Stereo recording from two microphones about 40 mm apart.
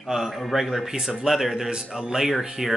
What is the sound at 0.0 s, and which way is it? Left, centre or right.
Speech, centre.